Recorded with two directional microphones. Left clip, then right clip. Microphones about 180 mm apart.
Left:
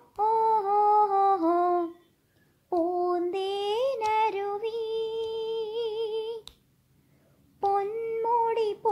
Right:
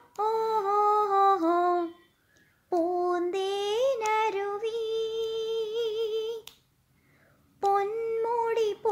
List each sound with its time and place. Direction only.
0.1 s humming: 20° right (ahead or behind)
2.7 s child singing: 25° right (ahead or behind)
7.6 s child singing: 25° right (ahead or behind)